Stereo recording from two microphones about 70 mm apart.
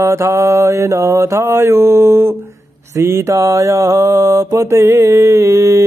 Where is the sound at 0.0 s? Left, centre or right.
Right.